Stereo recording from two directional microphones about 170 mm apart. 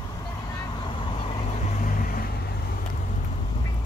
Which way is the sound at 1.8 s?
50° left (ahead or behind).